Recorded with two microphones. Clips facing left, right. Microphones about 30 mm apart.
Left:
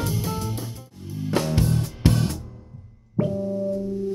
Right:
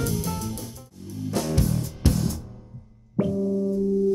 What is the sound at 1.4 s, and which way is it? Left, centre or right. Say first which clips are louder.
Music: left 2 dB; left.